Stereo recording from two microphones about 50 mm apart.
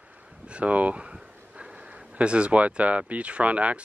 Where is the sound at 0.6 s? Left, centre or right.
Right.